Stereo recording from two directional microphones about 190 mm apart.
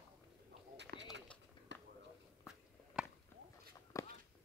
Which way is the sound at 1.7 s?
70° right (ahead or behind).